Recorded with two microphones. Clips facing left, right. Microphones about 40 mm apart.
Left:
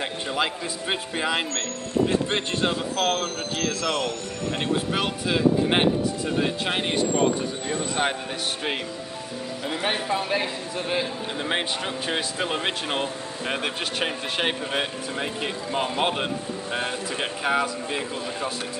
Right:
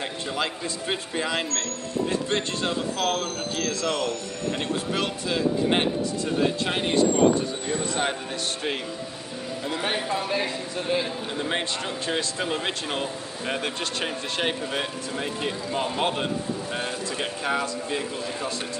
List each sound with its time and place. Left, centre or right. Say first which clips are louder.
0.0 s a man's voice: left 2 dB; centre
9.8 s a man's voice: left 2 dB; centre